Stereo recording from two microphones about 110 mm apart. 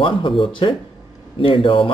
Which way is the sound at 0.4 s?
50° left (ahead or behind).